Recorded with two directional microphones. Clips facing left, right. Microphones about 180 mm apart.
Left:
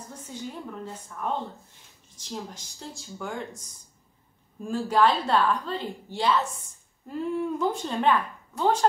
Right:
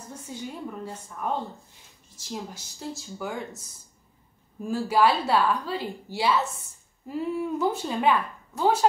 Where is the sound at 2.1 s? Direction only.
5° right (ahead or behind).